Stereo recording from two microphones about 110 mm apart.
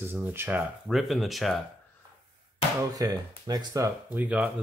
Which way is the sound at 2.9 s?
35° right (ahead or behind).